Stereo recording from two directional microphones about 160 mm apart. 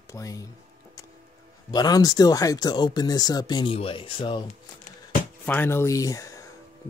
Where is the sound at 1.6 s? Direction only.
25° left (ahead or behind).